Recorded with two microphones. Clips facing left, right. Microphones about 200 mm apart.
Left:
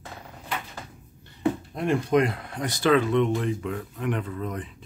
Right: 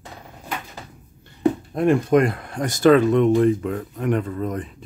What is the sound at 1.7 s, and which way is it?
Speech, 50° right (ahead or behind).